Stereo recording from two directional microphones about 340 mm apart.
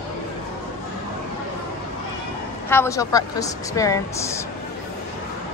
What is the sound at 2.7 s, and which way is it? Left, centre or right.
A woman's voice, centre.